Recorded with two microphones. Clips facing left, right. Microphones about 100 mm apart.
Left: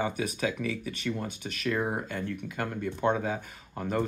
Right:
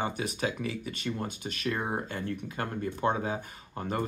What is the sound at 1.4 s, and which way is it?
Speech, 20° right (ahead or behind).